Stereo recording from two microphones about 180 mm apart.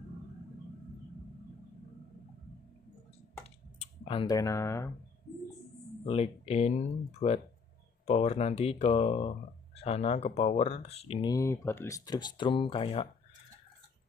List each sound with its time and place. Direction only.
3.8 s clicking: 30° left (ahead or behind)
4.4 s speech: 15° left (ahead or behind)
6.0 s speech: 35° left (ahead or behind)